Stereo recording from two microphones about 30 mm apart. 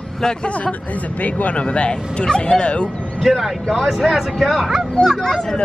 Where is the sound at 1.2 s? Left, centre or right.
Left.